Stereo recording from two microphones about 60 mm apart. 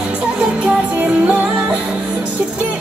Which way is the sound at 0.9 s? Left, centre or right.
Right.